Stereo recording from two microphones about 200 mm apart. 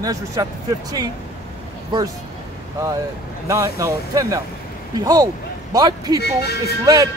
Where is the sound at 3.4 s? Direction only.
15° right (ahead or behind).